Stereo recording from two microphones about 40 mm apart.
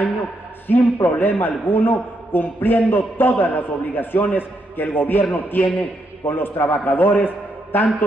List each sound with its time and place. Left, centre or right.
0.7 s a man's voice: left